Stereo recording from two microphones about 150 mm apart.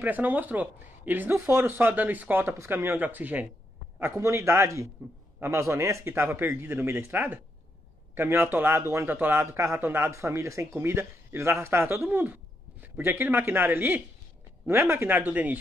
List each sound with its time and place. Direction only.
0.0 s a man's voice: 10° right (ahead or behind)